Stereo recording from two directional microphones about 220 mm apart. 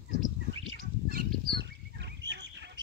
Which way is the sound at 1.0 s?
45° right (ahead or behind).